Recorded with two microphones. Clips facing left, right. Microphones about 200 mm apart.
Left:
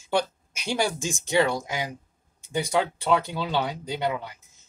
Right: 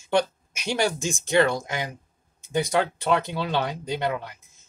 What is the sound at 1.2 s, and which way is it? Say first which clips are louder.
Speech: right 2 dB; 15° left (ahead or behind).